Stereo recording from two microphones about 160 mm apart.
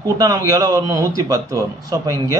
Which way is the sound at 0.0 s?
20° right (ahead or behind).